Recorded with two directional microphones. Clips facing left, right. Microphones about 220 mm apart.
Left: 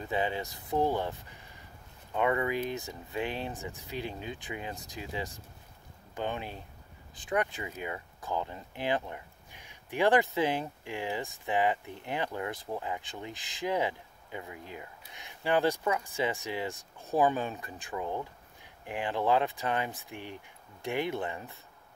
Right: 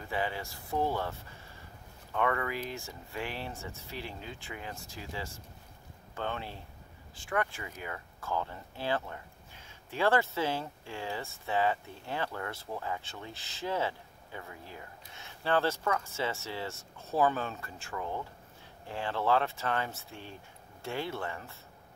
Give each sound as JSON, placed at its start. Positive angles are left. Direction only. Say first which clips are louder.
{"t": 0.1, "sound": "speech", "louder": "left 3 dB", "side_deg": 20}